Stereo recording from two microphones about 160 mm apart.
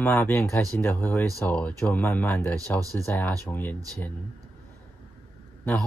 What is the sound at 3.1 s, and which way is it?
Speech, 10° left (ahead or behind).